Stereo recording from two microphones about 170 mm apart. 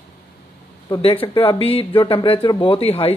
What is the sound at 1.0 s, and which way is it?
Speech, 35° left (ahead or behind).